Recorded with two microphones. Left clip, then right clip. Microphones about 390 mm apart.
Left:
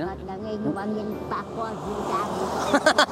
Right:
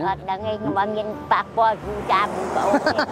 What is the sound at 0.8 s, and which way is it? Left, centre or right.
Speech, right.